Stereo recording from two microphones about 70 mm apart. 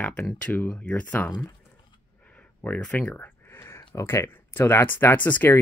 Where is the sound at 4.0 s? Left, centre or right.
Left.